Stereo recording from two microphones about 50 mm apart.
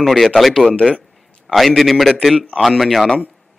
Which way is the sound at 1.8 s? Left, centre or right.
Centre.